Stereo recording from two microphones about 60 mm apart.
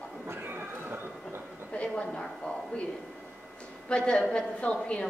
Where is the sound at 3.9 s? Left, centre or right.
Centre.